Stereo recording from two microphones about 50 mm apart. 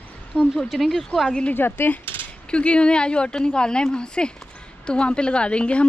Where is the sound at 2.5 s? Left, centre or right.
Left.